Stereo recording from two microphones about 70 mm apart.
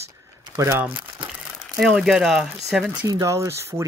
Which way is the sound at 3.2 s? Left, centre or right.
Right.